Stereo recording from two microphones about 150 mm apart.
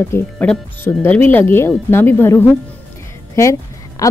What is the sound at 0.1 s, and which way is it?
A woman's voice, 15° left (ahead or behind).